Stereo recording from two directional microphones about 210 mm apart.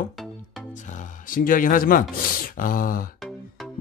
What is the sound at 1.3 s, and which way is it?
Speech, 40° left (ahead or behind).